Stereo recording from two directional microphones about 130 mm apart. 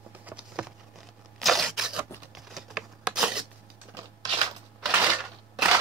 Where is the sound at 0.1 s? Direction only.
10° right (ahead or behind).